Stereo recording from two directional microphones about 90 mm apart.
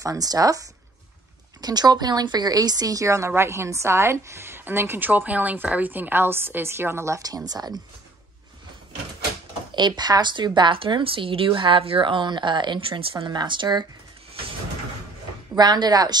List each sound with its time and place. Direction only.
0.0 s a woman's voice: 40° right (ahead or behind)
9.8 s a woman's voice: 55° right (ahead or behind)
15.5 s speech: 50° right (ahead or behind)